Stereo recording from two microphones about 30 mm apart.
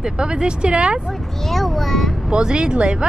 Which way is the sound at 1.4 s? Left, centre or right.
Centre.